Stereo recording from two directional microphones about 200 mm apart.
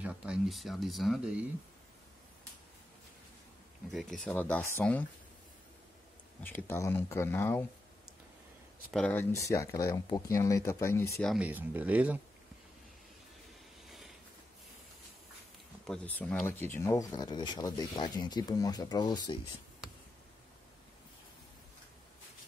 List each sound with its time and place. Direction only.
0.0 s speech: 5° right (ahead or behind)
3.9 s speech: centre (ahead or behind)
6.4 s speech: 10° left (ahead or behind)
8.9 s speech: 5° left (ahead or behind)
11.2 s speech: 5° right (ahead or behind)
15.9 s speech: 5° left (ahead or behind)